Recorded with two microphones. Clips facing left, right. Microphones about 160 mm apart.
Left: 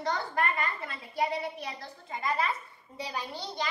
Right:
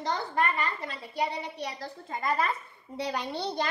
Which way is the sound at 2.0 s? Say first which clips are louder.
Right 2 dB; 50° right (ahead or behind).